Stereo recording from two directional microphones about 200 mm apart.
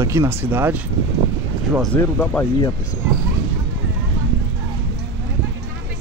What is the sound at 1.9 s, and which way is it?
Speech, 10° left (ahead or behind).